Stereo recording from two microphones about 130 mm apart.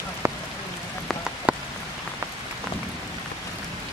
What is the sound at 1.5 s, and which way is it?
Rain on surface, 10° right (ahead or behind).